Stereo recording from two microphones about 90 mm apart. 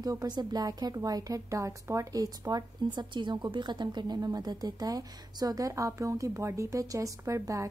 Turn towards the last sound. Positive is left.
turn(degrees=-35)  # may be behind; listen again after turning